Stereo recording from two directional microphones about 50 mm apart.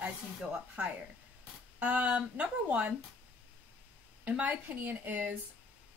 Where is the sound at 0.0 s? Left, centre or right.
Right.